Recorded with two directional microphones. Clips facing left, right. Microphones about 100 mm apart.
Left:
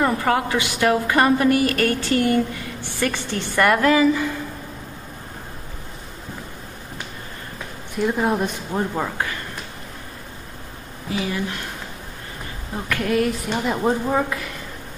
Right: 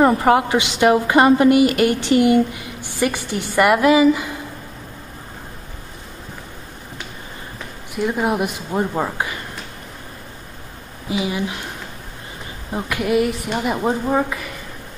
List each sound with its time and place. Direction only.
0.0 s a woman's voice: 20° right (ahead or behind)
7.9 s a woman's voice: 5° right (ahead or behind)
11.1 s a woman's voice: 15° right (ahead or behind)
12.7 s a woman's voice: 15° right (ahead or behind)